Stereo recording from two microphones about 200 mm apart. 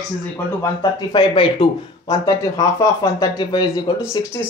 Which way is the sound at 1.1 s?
25° left (ahead or behind).